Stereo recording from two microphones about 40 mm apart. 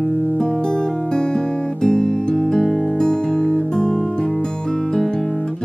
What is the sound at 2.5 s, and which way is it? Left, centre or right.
Music, centre.